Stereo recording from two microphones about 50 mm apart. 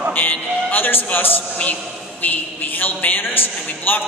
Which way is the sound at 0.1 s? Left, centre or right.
Left.